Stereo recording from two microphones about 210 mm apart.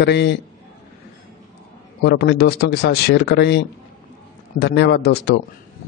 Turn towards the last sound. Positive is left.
turn(degrees=50)  # may be behind; listen again after turning